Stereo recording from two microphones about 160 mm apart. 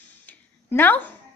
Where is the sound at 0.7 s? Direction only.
10° left (ahead or behind).